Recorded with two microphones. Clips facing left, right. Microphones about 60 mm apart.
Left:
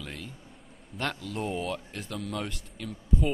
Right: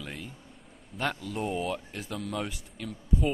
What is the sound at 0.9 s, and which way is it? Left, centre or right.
Speech, centre.